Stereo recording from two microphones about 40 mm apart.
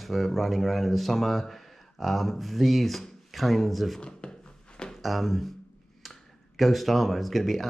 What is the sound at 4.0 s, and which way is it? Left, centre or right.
Speech, left.